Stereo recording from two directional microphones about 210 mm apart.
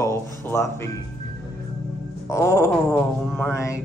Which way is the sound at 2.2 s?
15° left (ahead or behind).